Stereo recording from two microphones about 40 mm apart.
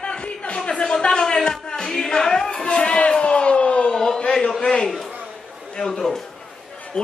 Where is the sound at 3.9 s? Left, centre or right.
Centre.